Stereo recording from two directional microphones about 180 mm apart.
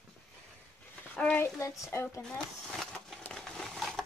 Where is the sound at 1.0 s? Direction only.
10° left (ahead or behind).